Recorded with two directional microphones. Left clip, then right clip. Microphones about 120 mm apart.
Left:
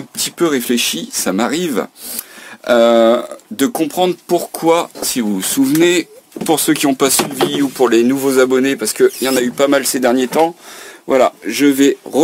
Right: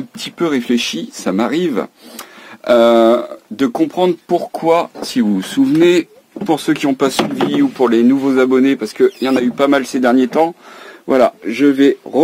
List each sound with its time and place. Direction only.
0.2 s speech: centre (ahead or behind)
3.5 s speech: 5° right (ahead or behind)
5.0 s speech: 20° right (ahead or behind)
5.6 s speech: 10° left (ahead or behind)
7.5 s speech: centre (ahead or behind)
10.1 s speech: 15° right (ahead or behind)
11.1 s speech: 40° right (ahead or behind)
11.4 s speech: 5° right (ahead or behind)